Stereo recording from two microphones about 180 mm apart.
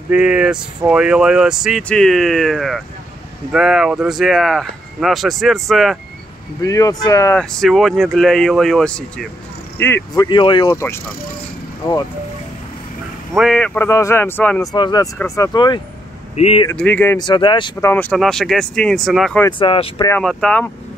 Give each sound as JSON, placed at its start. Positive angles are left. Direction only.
{"t": 0.1, "sound": "speech", "side_deg": -5}
{"t": 6.6, "sound": "speech", "side_deg": 20}
{"t": 7.3, "sound": "speech", "side_deg": 0}
{"t": 10.3, "sound": "speech", "side_deg": 25}
{"t": 11.8, "sound": "speech", "side_deg": 20}
{"t": 13.4, "sound": "speech", "side_deg": 5}
{"t": 14.6, "sound": "speech", "side_deg": 20}
{"t": 16.3, "sound": "speech", "side_deg": 35}
{"t": 16.7, "sound": "speech", "side_deg": 10}
{"t": 17.2, "sound": "speech", "side_deg": 25}
{"t": 17.8, "sound": "speech", "side_deg": 10}
{"t": 19.6, "sound": "speech", "side_deg": 30}
{"t": 20.1, "sound": "speech", "side_deg": 5}